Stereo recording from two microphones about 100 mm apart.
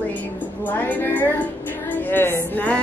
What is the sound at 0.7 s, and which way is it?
Speech, 15° left (ahead or behind).